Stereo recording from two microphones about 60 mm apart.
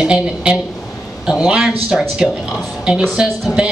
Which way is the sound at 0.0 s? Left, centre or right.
Centre.